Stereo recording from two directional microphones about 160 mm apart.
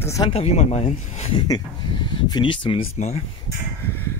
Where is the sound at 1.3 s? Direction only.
25° left (ahead or behind).